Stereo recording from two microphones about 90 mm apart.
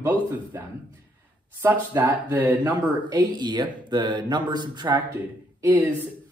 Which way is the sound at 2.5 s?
50° right (ahead or behind).